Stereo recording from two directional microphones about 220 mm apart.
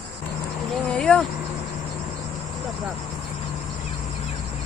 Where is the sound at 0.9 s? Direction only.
5° left (ahead or behind).